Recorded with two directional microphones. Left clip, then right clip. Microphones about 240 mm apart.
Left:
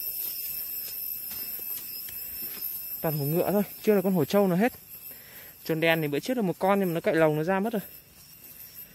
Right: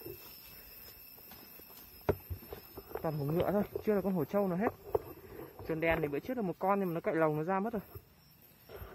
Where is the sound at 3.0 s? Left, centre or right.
Left.